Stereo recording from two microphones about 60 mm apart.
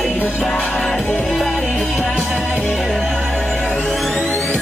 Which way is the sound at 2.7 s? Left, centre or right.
Centre.